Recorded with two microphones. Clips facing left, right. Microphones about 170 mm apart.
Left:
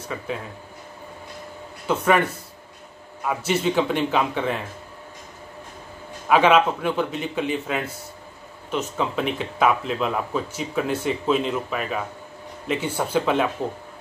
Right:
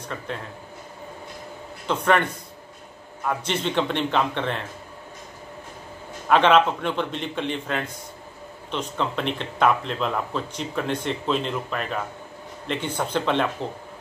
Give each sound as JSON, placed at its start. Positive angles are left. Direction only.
{"t": 0.1, "sound": "speech", "side_deg": 5}
{"t": 1.9, "sound": "a man's voice", "side_deg": 5}
{"t": 3.3, "sound": "speech", "side_deg": 5}
{"t": 6.2, "sound": "a man's voice", "side_deg": 5}